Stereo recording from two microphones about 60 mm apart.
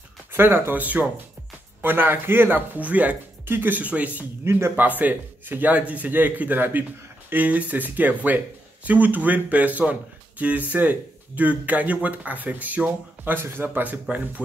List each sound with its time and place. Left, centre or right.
0.3 s speech: right
0.7 s speech: right
3.4 s speech: right
4.5 s speech: right
4.7 s speech: right